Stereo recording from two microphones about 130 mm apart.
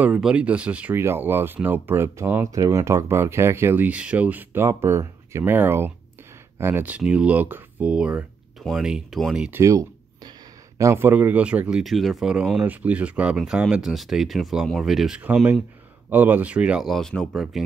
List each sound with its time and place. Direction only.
0.0 s speech: 10° right (ahead or behind)
9.6 s a sound: 25° right (ahead or behind)
10.8 s speech: 20° right (ahead or behind); by 17.6 s 5° right (ahead or behind)